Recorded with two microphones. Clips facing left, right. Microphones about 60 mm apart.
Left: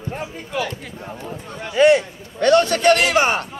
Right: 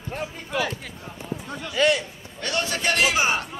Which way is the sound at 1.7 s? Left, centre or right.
Left.